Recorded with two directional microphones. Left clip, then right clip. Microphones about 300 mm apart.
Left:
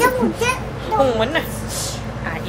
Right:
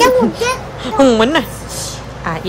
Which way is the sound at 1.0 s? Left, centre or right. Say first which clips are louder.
Right 9 dB; right.